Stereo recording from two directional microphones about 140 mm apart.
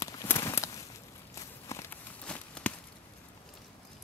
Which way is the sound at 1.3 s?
20° left (ahead or behind).